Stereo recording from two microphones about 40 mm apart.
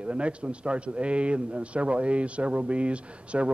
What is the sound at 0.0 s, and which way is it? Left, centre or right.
A man's voice, right.